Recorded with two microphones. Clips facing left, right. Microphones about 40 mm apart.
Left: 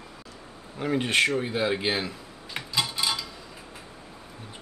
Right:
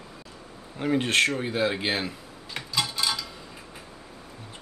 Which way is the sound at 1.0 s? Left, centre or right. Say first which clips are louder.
Even; centre.